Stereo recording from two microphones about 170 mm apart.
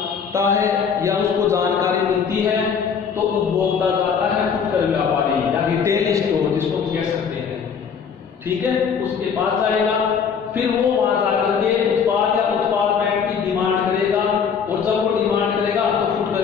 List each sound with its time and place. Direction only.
0.4 s mantra: 15° right (ahead or behind)